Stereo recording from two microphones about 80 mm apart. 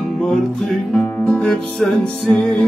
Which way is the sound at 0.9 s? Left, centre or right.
Centre.